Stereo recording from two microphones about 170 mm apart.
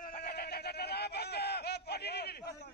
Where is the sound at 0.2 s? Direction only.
70° left (ahead or behind).